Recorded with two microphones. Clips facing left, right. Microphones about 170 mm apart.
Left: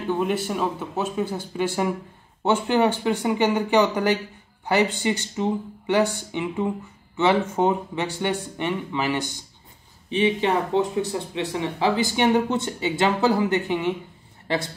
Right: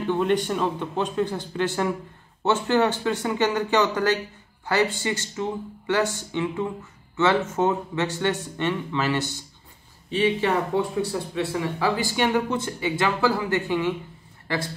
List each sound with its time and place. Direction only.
0.1 s speech: 5° left (ahead or behind); by 13.9 s 20° left (ahead or behind)